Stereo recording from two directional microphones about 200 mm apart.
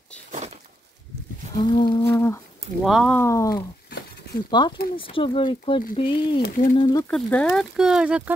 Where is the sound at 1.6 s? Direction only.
25° left (ahead or behind).